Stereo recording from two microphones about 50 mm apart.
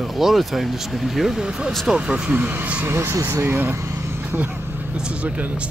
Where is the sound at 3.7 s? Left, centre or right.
Right.